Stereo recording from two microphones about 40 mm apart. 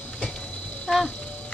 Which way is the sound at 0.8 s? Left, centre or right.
Centre.